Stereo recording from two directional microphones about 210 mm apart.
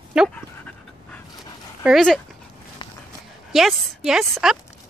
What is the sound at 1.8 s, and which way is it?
Speech, centre (ahead or behind).